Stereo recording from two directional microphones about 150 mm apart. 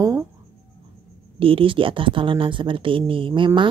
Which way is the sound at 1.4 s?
35° right (ahead or behind).